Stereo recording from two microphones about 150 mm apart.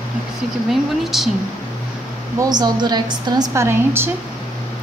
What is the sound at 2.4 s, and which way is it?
A woman's voice, 25° right (ahead or behind).